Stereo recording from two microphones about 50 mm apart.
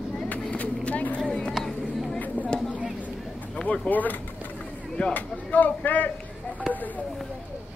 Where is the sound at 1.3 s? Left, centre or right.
Centre.